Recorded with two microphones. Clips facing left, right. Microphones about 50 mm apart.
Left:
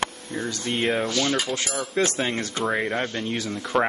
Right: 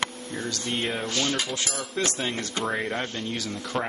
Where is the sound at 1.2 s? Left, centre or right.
Centre.